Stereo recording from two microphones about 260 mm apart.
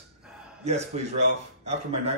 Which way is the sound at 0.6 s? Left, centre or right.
Right.